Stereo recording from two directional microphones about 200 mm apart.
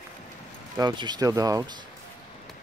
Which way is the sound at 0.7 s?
20° right (ahead or behind).